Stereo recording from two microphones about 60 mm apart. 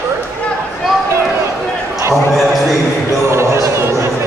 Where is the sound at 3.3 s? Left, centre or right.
Right.